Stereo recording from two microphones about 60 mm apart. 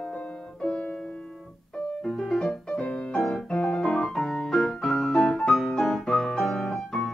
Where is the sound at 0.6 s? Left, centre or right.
Centre.